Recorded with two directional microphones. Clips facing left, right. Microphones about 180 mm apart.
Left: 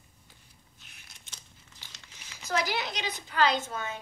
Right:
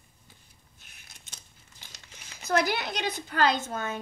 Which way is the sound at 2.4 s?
55° right (ahead or behind).